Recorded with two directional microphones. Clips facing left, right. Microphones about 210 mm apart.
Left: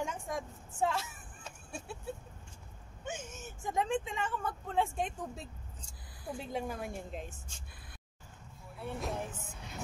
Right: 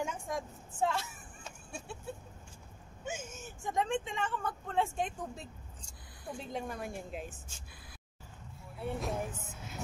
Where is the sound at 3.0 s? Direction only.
Centre (ahead or behind).